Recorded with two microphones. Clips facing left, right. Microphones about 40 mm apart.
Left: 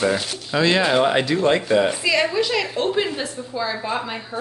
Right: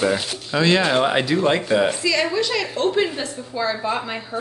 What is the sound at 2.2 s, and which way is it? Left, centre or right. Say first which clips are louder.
A woman's voice: left 1 dB; centre.